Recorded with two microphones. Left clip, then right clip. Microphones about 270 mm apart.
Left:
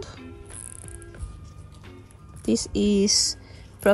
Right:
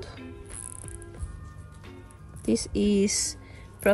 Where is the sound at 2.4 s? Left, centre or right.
Centre.